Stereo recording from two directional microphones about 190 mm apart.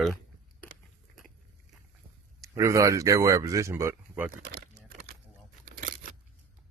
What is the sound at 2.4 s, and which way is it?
Speech, 15° right (ahead or behind).